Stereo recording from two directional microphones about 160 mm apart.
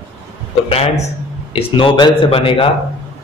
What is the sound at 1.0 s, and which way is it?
A man's voice, 35° left (ahead or behind).